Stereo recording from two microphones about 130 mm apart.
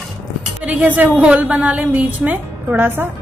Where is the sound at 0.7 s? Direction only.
10° right (ahead or behind).